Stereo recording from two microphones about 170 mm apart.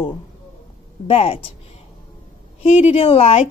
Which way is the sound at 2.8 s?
35° left (ahead or behind).